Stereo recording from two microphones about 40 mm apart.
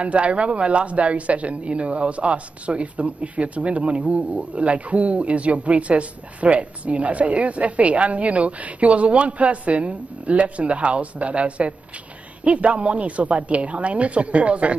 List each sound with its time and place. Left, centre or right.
0.0 s speech: right